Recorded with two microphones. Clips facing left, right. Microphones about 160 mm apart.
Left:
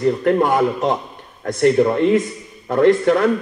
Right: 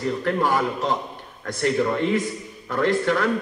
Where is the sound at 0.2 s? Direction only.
45° left (ahead or behind).